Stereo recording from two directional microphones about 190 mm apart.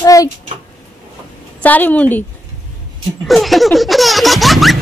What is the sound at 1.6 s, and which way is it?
Speech, 10° left (ahead or behind).